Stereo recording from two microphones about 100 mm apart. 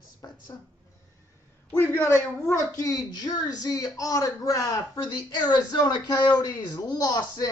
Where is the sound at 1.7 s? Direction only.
25° left (ahead or behind).